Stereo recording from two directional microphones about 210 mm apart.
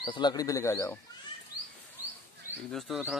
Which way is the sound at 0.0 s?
20° left (ahead or behind).